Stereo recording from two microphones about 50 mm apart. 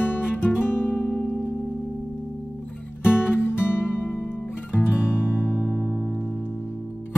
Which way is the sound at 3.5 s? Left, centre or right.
Left.